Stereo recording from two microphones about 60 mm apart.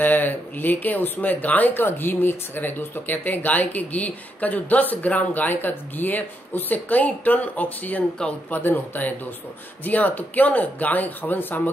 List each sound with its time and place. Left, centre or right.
0.0 s speech: left